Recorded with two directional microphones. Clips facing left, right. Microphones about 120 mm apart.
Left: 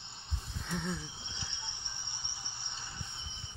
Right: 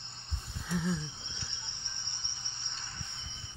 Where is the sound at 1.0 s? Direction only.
15° left (ahead or behind).